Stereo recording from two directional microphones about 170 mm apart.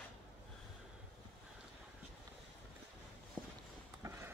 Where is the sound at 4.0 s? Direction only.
15° right (ahead or behind).